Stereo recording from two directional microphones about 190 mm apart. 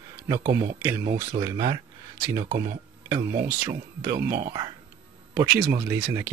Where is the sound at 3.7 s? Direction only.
20° right (ahead or behind).